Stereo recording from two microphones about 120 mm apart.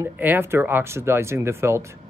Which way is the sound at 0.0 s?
15° right (ahead or behind).